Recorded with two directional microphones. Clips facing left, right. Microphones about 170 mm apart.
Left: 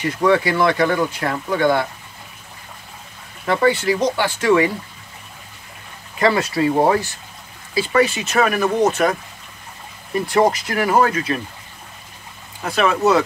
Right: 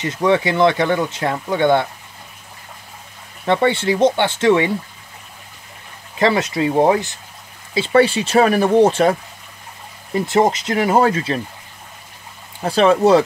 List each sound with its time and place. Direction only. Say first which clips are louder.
0.0 s speech: even; 20° right (ahead or behind)
3.4 s speech: right 1 dB; 25° right (ahead or behind)
6.1 s speech: right 1 dB; 20° right (ahead or behind)
10.1 s speech: right 1 dB; 25° right (ahead or behind)
12.6 s speech: right 4 dB; 30° right (ahead or behind)